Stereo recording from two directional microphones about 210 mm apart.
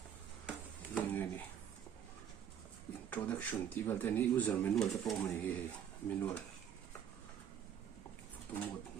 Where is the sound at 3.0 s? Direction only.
10° left (ahead or behind).